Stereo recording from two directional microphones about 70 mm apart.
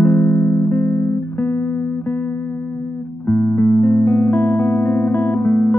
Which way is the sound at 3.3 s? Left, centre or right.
Left.